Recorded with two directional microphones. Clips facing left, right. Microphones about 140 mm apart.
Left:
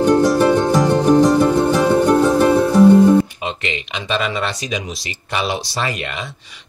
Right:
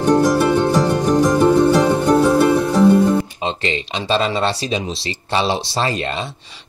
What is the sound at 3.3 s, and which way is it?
Speech, 30° right (ahead or behind).